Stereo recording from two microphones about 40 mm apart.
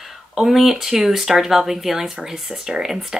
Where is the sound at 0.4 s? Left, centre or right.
Centre.